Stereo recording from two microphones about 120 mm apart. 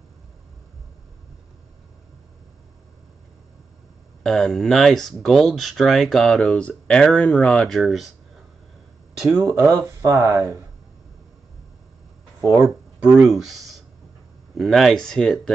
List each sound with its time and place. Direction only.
4.2 s speech: centre (ahead or behind)
9.3 s speech: 20° right (ahead or behind)
12.4 s speech: 25° right (ahead or behind)
13.0 s speech: 5° right (ahead or behind)